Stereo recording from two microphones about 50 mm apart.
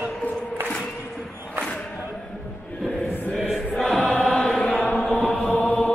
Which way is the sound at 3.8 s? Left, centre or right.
Centre.